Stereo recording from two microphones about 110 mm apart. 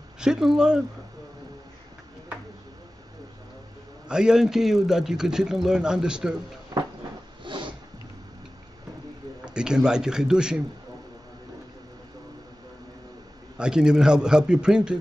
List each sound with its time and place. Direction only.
0.2 s a man's voice: 5° right (ahead or behind)
4.1 s a man's voice: 5° right (ahead or behind)
6.7 s cupboard open or close: 35° right (ahead or behind)
7.4 s a sound: 45° right (ahead or behind)
9.4 s a man's voice: 10° right (ahead or behind)
13.6 s a man's voice: 5° right (ahead or behind)